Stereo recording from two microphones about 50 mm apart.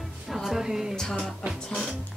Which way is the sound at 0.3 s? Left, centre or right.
Centre.